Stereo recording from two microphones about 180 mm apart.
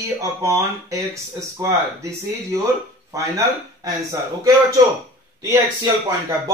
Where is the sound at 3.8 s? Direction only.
20° right (ahead or behind).